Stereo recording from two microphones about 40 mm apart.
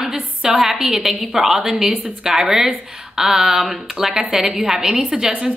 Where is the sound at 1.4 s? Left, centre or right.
Centre.